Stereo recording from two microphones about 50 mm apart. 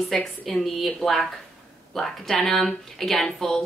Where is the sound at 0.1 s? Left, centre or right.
Centre.